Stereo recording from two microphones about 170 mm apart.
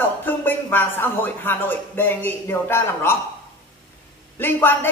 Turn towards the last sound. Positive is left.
turn(degrees=10)  # may be behind; listen again after turning